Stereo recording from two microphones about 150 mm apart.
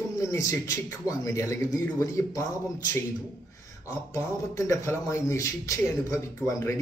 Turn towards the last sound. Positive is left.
turn(degrees=20)  # may be behind; listen again after turning